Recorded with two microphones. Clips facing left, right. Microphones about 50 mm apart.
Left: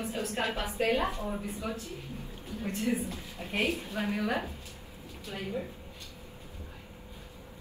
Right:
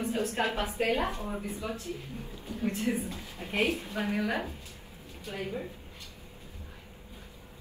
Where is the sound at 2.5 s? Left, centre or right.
Right.